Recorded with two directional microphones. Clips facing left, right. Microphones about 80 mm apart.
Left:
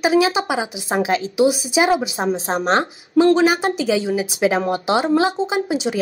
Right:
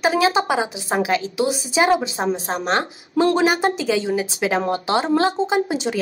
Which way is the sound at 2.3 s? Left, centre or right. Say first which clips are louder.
Left 3 dB; left.